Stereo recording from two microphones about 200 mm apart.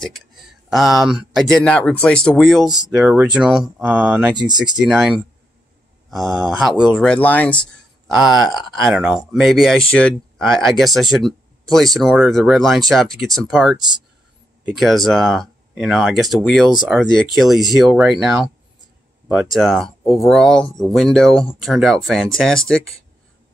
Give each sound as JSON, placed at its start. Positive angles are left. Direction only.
{"t": 0.0, "sound": "speech", "side_deg": 0}
{"t": 4.4, "sound": "speech", "side_deg": -20}
{"t": 4.7, "sound": "speech", "side_deg": 0}
{"t": 19.5, "sound": "speech", "side_deg": 0}